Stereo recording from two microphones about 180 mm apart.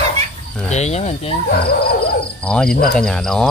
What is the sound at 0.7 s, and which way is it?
Speech, 40° left (ahead or behind).